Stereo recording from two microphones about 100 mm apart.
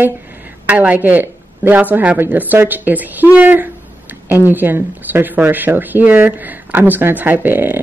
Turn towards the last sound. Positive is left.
turn(degrees=-20)  # may be behind; listen again after turning